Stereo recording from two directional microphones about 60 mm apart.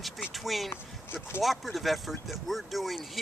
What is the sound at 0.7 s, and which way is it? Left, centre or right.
Speech, left.